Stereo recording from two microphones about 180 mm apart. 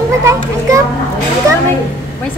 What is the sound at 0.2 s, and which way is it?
Speech, 15° right (ahead or behind).